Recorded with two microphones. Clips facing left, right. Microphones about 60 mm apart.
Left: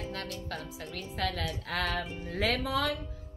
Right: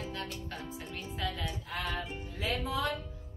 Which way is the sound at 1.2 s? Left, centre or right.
Left.